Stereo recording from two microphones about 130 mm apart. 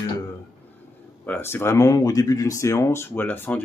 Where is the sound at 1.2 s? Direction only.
15° left (ahead or behind).